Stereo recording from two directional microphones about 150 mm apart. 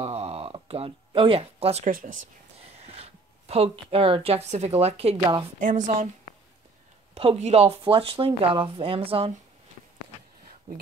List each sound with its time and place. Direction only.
0.0 s a sound: 45° right (ahead or behind)
1.9 s speech: 65° right (ahead or behind)
2.9 s speech: 40° right (ahead or behind)
5.2 s speech: 30° right (ahead or behind)
5.6 s speech: 60° right (ahead or behind)
7.2 s speech: 40° right (ahead or behind)